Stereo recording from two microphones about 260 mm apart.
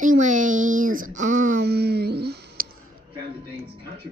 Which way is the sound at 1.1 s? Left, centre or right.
Right.